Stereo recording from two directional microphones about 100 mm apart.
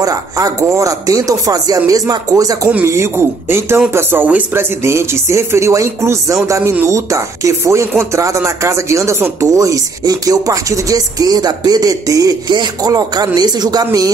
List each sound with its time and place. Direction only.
0.0 s chopping: 35° right (ahead or behind)
2.7 s speech: 25° right (ahead or behind)
8.2 s chopping: 30° right (ahead or behind)